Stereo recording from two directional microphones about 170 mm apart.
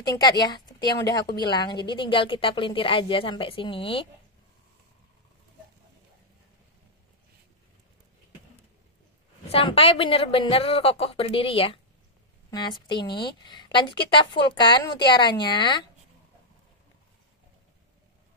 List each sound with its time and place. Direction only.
0.1 s a woman's voice: 25° left (ahead or behind)
9.5 s a woman's voice: 35° left (ahead or behind)
12.4 s a sound: 25° left (ahead or behind)
12.8 s a woman's voice: 25° left (ahead or behind)